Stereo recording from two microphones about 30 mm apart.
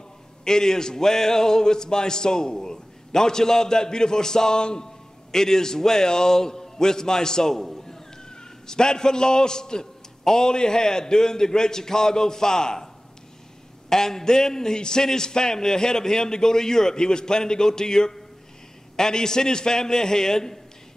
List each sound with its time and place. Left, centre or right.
0.5 s a man's voice: left
8.3 s a man's voice: left